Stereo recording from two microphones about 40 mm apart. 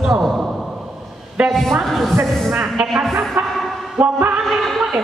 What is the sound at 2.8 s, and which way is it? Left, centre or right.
Speech, centre.